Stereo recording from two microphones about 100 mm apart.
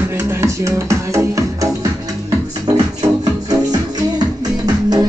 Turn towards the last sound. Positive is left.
turn(degrees=-45)  # may be behind; listen again after turning